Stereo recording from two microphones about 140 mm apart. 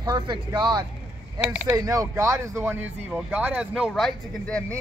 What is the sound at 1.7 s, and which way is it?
Speech, 25° right (ahead or behind).